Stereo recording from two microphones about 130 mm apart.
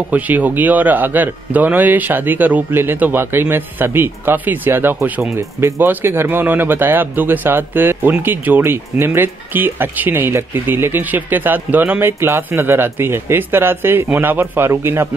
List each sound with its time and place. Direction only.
0.1 s speech: 10° right (ahead or behind)